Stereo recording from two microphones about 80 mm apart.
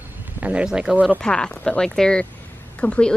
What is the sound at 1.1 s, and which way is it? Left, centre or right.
A woman's voice, centre.